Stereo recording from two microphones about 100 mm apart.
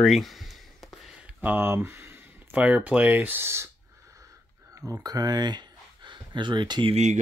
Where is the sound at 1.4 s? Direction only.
20° right (ahead or behind).